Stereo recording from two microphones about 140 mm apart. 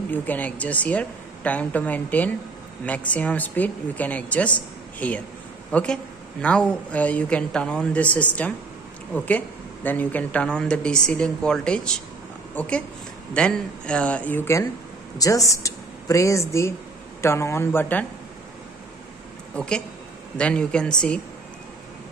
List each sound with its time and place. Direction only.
0.1 s a woman's voice: 10° left (ahead or behind)
19.5 s a woman's voice: 5° left (ahead or behind)